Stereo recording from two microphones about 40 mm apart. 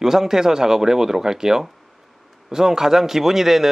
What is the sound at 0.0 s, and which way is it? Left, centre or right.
Speech, centre.